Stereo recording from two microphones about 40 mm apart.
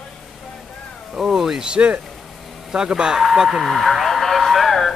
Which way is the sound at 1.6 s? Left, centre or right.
Right.